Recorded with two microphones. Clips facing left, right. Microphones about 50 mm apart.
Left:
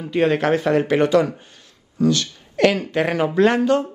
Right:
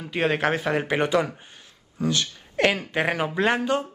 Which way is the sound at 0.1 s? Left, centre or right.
Centre.